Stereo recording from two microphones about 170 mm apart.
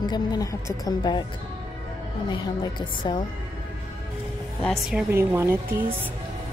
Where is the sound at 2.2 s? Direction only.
25° left (ahead or behind).